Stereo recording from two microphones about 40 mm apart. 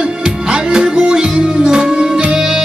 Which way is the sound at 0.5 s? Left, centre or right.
Right.